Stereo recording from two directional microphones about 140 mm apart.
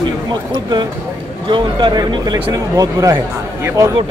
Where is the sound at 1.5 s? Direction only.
35° right (ahead or behind).